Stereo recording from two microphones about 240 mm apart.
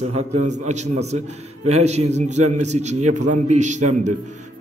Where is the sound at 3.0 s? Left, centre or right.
Right.